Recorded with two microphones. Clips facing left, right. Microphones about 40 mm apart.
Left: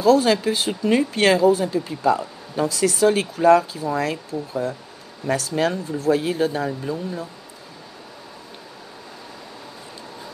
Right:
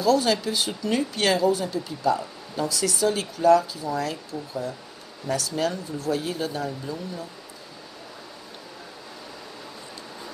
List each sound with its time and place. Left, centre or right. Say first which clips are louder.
0.0 s speech: left 5 dB; left